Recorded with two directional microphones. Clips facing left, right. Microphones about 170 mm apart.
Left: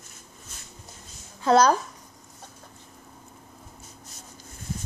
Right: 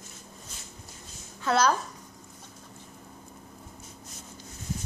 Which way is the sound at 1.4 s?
40° left (ahead or behind).